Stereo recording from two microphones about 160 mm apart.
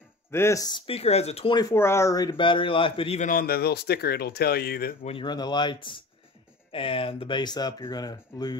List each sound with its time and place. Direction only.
0.3 s speech: 15° left (ahead or behind); by 1.6 s 35° left (ahead or behind)
1.6 s a man's voice: 15° left (ahead or behind); by 3.2 s 35° left (ahead or behind)
3.2 s speech: 60° left (ahead or behind)
5.0 s a man's voice: 30° left (ahead or behind)